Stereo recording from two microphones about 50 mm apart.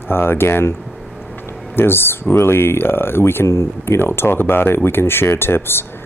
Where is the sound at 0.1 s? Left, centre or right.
Left.